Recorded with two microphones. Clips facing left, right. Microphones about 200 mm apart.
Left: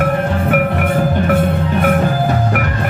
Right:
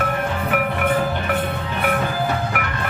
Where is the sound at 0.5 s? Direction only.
45° left (ahead or behind).